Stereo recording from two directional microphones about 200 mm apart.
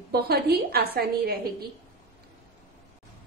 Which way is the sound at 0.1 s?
50° right (ahead or behind).